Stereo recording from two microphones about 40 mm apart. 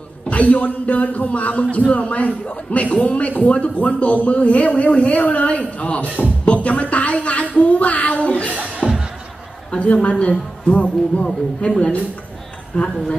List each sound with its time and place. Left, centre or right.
0.3 s speech: left
6.4 s music: left
7.5 s a sound: left
8.8 s music: centre
9.7 s a woman's voice: left